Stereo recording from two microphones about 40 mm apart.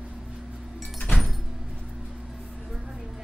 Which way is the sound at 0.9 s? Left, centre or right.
Left.